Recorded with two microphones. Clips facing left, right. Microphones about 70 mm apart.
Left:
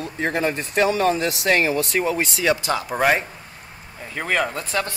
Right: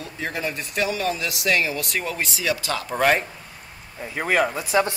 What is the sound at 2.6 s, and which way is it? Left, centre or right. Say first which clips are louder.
Speech: left 1 dB; centre.